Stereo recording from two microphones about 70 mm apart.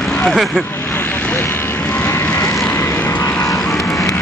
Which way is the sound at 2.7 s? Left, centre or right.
Left.